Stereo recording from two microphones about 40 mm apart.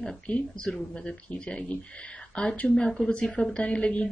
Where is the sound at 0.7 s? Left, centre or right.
Left.